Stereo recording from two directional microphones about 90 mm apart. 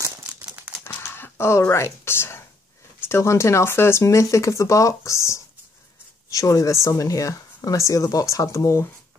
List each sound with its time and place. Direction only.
0.3 s crumpling: 20° right (ahead or behind)
0.8 s speech: 25° left (ahead or behind)